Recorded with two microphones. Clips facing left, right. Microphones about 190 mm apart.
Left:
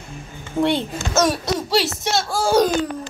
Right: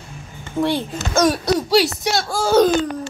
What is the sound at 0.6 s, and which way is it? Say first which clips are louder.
Speech: left 1 dB; 25° left (ahead or behind).